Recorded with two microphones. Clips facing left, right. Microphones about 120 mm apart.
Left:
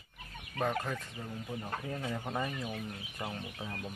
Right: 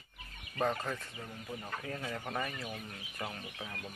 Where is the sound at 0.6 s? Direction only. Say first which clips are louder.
Even; 5° left (ahead or behind).